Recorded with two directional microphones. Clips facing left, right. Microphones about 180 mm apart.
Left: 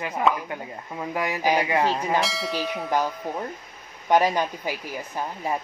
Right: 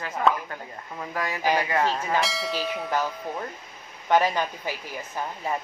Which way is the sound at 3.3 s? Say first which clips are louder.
Left 2 dB; 15° left (ahead or behind).